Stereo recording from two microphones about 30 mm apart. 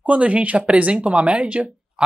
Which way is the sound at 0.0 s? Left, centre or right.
Right.